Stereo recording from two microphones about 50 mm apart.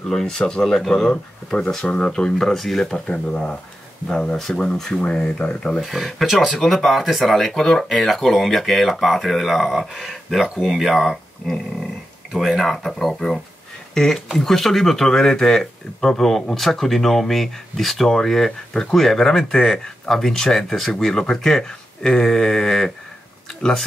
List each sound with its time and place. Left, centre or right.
0.1 s speech: centre
2.9 s speech: centre
5.8 s speech: centre